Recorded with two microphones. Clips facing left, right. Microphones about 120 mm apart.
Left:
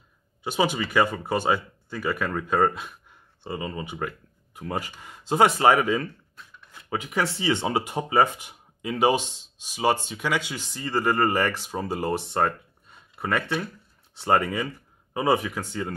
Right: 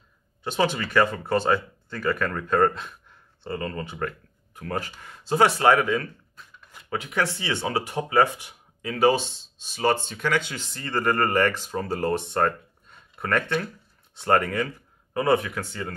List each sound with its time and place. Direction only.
0.4 s speech: 10° left (ahead or behind)